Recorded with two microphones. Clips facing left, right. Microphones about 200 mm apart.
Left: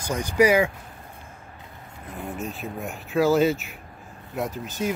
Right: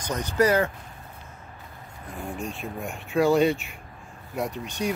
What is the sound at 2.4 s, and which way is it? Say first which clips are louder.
Speech: left 1 dB; centre (ahead or behind).